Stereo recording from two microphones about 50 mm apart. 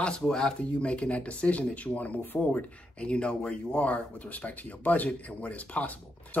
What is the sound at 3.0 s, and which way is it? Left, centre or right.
Speech, left.